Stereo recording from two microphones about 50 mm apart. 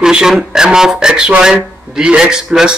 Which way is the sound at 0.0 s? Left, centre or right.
Centre.